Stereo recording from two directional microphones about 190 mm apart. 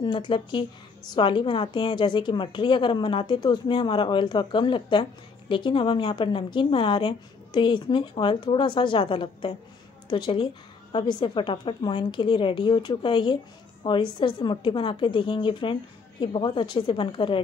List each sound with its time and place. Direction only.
0.0 s a woman's voice: 25° left (ahead or behind)